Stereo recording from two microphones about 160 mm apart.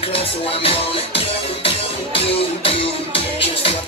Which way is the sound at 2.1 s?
35° left (ahead or behind).